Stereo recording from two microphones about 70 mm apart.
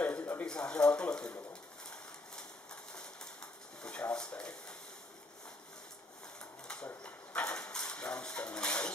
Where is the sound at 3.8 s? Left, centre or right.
Centre.